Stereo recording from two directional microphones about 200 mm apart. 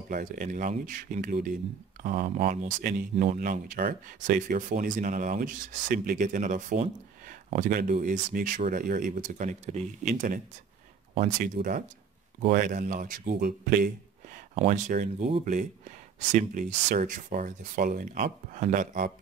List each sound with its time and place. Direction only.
0.1 s speech: 40° right (ahead or behind)